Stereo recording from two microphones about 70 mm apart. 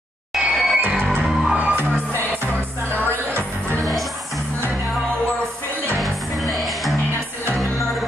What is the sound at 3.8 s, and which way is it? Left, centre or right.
Music, centre.